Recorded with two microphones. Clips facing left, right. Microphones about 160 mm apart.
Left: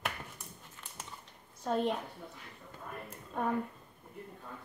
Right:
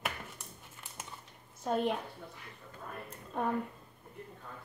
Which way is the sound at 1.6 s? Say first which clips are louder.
Even; 5° right (ahead or behind).